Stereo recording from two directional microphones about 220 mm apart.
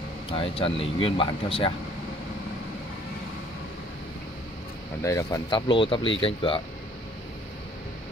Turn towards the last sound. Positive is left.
turn(degrees=25)  # may be behind; listen again after turning